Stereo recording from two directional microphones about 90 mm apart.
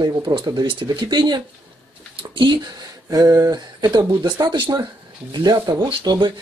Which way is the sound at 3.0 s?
45° right (ahead or behind).